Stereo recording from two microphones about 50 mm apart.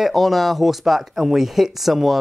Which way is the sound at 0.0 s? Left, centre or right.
Centre.